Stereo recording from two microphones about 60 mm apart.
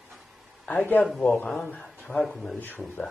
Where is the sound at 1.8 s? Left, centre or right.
Centre.